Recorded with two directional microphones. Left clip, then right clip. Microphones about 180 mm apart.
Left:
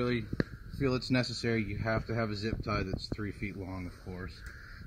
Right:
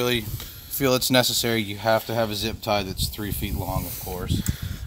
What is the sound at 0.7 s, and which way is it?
Speech, 65° right (ahead or behind).